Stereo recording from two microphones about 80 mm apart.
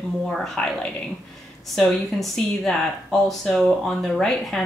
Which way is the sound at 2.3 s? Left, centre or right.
Centre.